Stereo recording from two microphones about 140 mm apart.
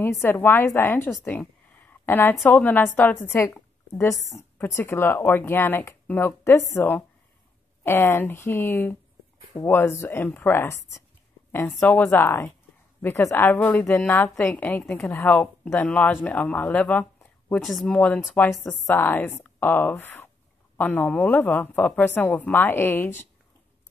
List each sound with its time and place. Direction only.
0.0 s speech: 15° left (ahead or behind)